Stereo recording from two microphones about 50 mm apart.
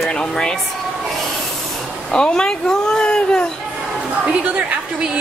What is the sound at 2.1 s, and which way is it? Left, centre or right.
Speech, centre.